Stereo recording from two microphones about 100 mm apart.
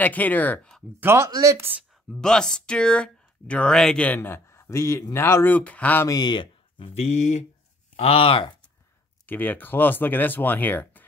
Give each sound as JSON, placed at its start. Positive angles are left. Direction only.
{"t": 0.0, "sound": "speech", "side_deg": 15}
{"t": 1.0, "sound": "speech", "side_deg": -30}
{"t": 2.0, "sound": "speech", "side_deg": 5}
{"t": 6.0, "sound": "speech", "side_deg": 40}
{"t": 6.9, "sound": "speech", "side_deg": 90}
{"t": 8.0, "sound": "speech", "side_deg": 70}
{"t": 9.2, "sound": "speech", "side_deg": 20}